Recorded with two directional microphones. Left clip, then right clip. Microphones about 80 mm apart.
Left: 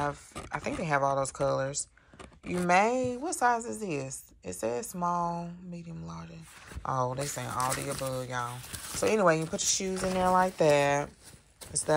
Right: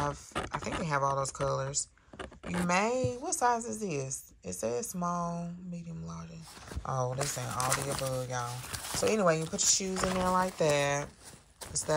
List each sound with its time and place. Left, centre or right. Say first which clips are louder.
0.0 s a sound: left 1 dB; right
0.4 s speech: even; centre
8.1 s speech: left 1 dB; right
10.2 s speech: left 6 dB; centre